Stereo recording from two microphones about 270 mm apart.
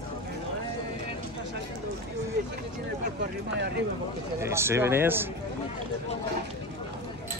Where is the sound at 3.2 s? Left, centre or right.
Right.